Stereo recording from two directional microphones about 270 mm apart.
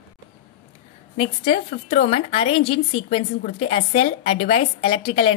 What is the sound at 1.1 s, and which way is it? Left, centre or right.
A woman's voice, left.